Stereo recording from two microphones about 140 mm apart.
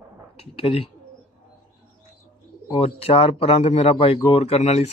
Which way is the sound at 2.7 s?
45° left (ahead or behind).